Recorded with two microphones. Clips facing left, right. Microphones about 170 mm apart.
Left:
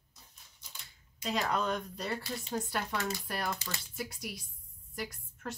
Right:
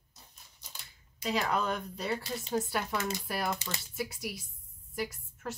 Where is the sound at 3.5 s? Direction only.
15° right (ahead or behind).